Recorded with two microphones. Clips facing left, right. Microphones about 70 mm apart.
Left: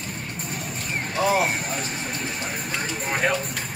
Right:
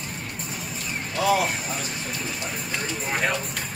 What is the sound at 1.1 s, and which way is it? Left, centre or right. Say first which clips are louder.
Speech: even; left.